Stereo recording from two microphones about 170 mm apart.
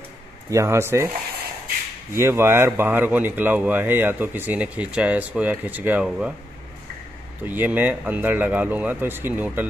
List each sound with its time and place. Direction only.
0.5 s speech: 15° right (ahead or behind)
2.1 s speech: 15° right (ahead or behind)
7.4 s speech: 10° right (ahead or behind)